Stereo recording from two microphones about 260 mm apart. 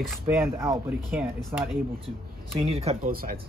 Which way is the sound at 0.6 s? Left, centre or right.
Centre.